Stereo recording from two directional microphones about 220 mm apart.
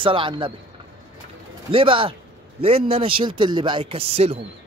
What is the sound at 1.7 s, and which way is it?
Speech, 25° right (ahead or behind).